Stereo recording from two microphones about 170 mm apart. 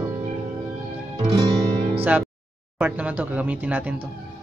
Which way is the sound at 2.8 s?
10° right (ahead or behind).